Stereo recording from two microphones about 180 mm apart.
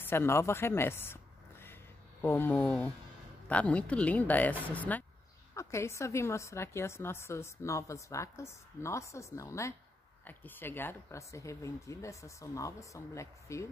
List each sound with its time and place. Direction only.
0.0 s a woman's voice: 10° left (ahead or behind)